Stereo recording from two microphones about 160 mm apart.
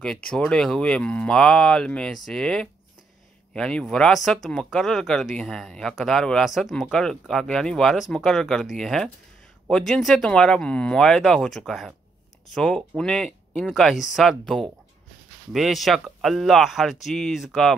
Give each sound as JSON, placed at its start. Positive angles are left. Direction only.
{"t": 0.0, "sound": "speech", "side_deg": 5}